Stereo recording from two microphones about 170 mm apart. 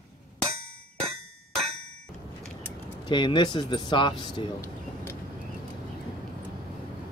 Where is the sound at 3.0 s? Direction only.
25° left (ahead or behind).